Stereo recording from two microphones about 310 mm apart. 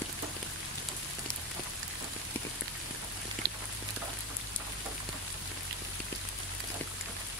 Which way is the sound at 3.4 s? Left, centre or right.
Right.